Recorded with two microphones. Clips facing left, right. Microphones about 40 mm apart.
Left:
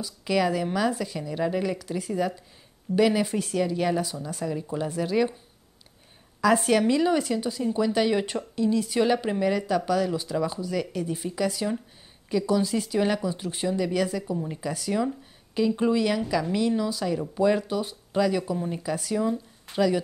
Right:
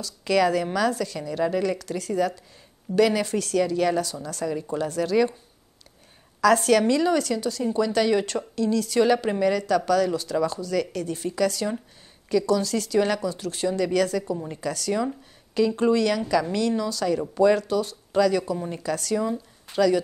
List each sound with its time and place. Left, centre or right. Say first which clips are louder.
0.0 s a woman's voice: right 3 dB; centre
6.4 s a woman's voice: right 2 dB; centre
19.1 s speech: even; centre